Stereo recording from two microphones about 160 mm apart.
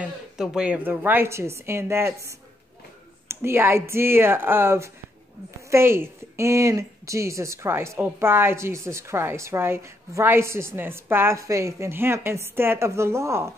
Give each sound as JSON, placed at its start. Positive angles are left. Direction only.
{"t": 0.0, "sound": "a woman's voice", "side_deg": -5}
{"t": 3.3, "sound": "a woman's voice", "side_deg": -15}